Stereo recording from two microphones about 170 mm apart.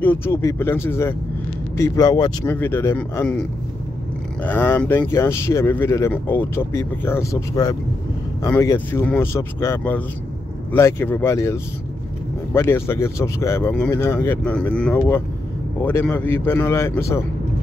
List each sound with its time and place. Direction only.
0.0 s speech: 10° left (ahead or behind)
2.4 s speech: 10° left (ahead or behind)
4.4 s speech: 10° left (ahead or behind)